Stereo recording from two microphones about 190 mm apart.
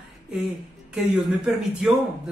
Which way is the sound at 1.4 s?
5° right (ahead or behind).